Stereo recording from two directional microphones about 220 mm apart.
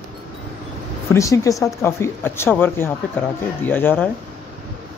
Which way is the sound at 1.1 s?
15° left (ahead or behind).